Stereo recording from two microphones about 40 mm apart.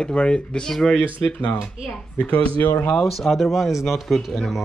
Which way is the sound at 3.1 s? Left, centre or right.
Centre.